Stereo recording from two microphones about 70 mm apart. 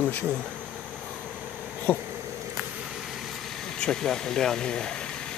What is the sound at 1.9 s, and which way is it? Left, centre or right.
Speech, left.